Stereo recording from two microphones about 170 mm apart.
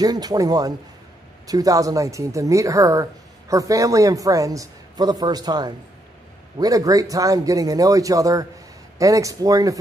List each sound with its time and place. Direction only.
0.0 s speech: 25° right (ahead or behind)